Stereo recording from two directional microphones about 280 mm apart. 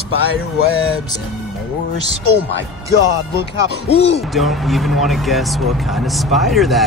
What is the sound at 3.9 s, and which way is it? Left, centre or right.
Speech, left.